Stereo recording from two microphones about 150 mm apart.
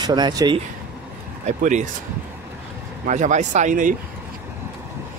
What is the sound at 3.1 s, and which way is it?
Speech, 55° right (ahead or behind).